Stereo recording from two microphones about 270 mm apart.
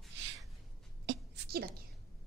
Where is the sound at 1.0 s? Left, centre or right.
Right.